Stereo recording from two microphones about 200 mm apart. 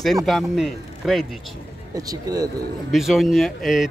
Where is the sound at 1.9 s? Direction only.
20° right (ahead or behind).